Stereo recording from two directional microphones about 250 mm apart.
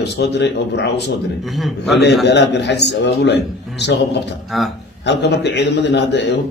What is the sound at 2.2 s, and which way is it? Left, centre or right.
A man's voice, left.